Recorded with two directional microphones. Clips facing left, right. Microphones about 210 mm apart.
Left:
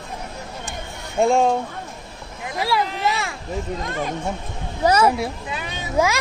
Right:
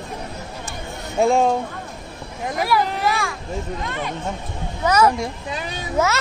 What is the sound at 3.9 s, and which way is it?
Speech, 40° left (ahead or behind).